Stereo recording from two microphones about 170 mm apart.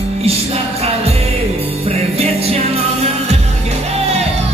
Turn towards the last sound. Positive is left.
turn(degrees=-40)  # may be behind; listen again after turning